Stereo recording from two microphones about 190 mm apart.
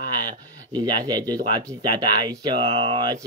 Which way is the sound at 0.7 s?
20° right (ahead or behind).